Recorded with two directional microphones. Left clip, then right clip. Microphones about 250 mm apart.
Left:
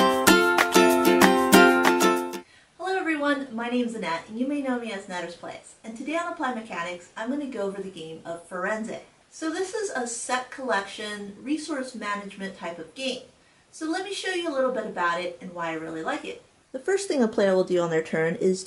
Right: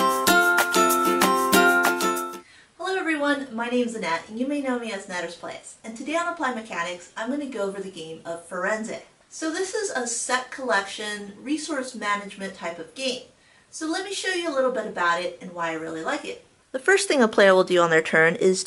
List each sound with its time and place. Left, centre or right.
0.0 s music: centre
6.0 s a woman's voice: centre
16.8 s speech: centre